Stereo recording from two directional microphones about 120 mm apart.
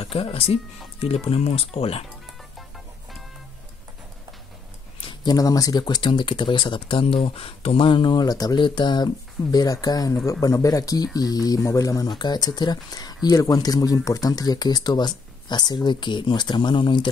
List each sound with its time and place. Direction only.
0.0 s speech: 55° left (ahead or behind)
5.2 s speech: 30° left (ahead or behind)